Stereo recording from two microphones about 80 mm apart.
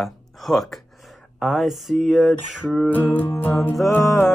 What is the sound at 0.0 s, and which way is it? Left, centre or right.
Speech, centre.